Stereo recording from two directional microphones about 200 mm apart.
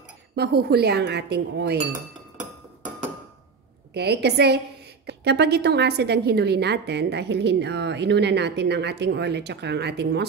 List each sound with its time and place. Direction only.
0.4 s a woman's voice: 55° right (ahead or behind)
3.9 s a woman's voice: 55° right (ahead or behind)